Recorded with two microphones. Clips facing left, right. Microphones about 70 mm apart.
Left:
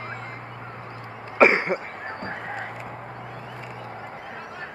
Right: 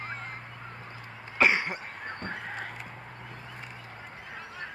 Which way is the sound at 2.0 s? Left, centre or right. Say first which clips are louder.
Left 3 dB; centre.